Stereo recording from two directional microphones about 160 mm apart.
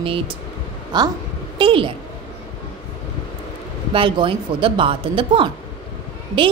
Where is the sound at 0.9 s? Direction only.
25° right (ahead or behind).